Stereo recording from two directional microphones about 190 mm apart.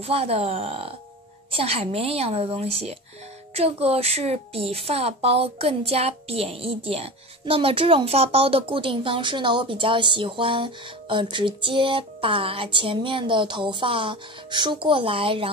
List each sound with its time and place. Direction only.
0.0 s a woman's voice: 30° right (ahead or behind)